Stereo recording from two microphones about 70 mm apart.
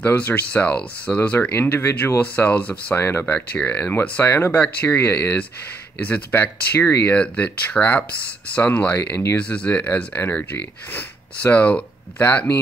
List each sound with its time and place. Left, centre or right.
0.0 s speech: left
1.6 s speech: left
2.1 s speech: left
3.0 s speech: left
7.2 s speech: centre
9.1 s speech: left
9.4 s speech: centre